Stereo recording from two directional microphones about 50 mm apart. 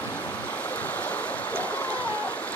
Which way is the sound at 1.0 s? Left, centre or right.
Left.